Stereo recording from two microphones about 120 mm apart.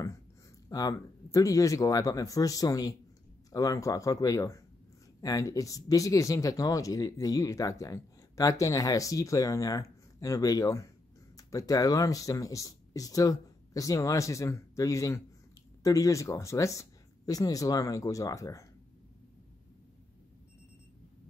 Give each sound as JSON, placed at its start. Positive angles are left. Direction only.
{"t": 0.7, "sound": "speech", "side_deg": 30}